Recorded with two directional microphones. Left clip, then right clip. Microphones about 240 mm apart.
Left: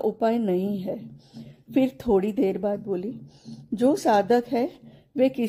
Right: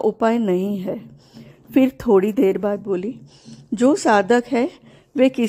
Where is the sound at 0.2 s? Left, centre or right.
Centre.